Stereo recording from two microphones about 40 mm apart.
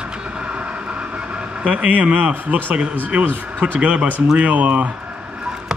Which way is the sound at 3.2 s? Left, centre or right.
Right.